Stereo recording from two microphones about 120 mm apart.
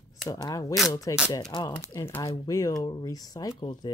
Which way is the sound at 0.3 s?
30° left (ahead or behind).